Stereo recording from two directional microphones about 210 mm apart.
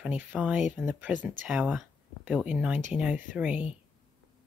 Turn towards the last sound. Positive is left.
turn(degrees=-5)  # may be behind; listen again after turning